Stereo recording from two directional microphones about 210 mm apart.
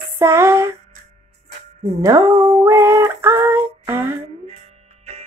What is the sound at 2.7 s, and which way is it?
Female singing, 15° right (ahead or behind).